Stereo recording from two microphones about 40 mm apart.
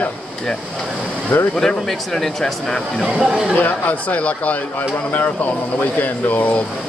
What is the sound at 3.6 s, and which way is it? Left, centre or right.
Speech, left.